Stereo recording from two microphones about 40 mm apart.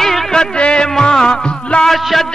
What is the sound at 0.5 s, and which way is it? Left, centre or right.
Music, left.